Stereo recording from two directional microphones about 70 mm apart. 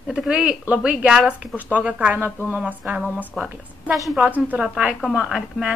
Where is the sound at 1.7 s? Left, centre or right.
Right.